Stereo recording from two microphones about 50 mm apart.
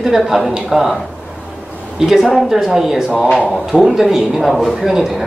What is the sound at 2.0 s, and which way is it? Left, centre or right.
Speech, centre.